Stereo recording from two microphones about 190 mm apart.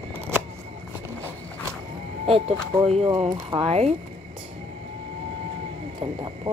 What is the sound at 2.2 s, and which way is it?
Speech, 30° right (ahead or behind).